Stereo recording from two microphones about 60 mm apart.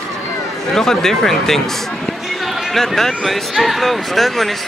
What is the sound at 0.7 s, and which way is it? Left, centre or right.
Speech, centre.